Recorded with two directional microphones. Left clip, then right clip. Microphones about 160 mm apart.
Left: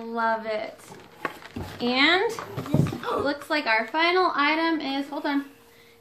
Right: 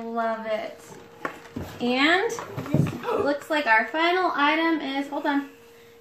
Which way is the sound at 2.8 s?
5° right (ahead or behind).